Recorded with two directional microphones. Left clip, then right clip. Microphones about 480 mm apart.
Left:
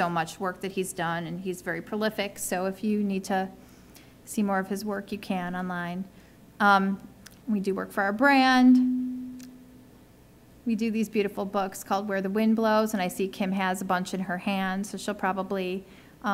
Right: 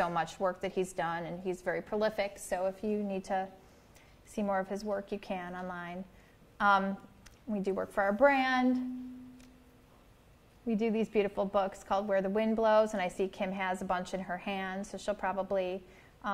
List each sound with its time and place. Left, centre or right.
0.0 s a woman's voice: right
10.7 s a woman's voice: centre